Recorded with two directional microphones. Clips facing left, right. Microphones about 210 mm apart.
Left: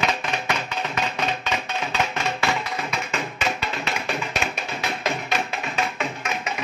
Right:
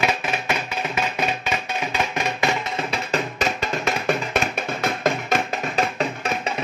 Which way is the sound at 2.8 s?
40° right (ahead or behind).